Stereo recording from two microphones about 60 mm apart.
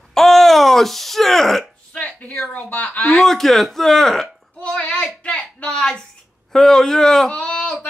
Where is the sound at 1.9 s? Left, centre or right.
Left.